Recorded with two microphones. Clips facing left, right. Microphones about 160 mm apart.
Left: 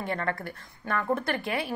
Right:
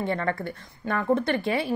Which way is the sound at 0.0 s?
30° right (ahead or behind).